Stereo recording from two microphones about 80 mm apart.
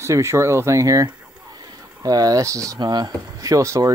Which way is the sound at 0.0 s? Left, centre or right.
Right.